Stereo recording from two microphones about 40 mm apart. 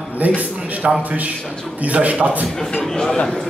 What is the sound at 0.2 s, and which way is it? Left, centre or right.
Speech, right.